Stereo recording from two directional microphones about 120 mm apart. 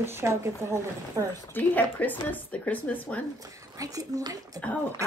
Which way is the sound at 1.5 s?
15° left (ahead or behind).